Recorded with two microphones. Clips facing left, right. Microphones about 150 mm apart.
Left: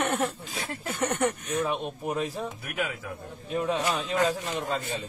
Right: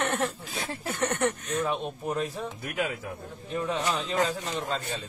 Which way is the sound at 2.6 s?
40° right (ahead or behind).